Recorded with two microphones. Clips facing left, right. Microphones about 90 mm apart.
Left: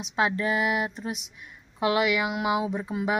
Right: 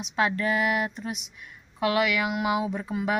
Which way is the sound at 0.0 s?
20° left (ahead or behind).